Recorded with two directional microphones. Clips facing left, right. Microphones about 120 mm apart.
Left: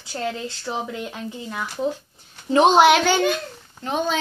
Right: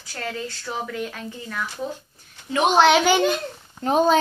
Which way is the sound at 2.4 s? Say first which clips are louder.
Left 5 dB; 30° left (ahead or behind).